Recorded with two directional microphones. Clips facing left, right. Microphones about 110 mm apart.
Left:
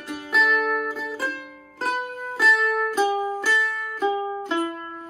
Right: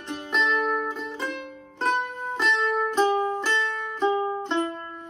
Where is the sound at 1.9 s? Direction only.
5° left (ahead or behind).